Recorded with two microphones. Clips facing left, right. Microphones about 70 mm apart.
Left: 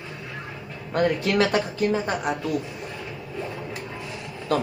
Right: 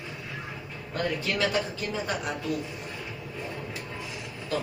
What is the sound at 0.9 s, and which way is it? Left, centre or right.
Speech, left.